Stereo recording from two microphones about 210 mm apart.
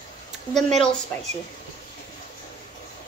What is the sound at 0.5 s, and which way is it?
Speech, 5° left (ahead or behind).